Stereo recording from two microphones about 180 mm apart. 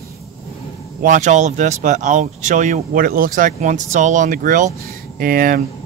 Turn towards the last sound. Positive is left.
turn(degrees=-55)  # may be behind; listen again after turning